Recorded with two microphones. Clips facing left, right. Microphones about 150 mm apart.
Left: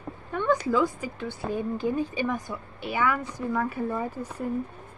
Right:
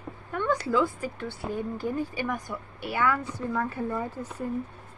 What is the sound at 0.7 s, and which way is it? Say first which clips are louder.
Speech: left 1 dB; 20° left (ahead or behind).